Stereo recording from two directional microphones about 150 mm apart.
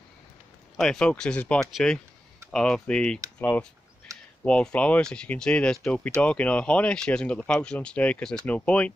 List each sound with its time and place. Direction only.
0.7 s speech: 5° left (ahead or behind)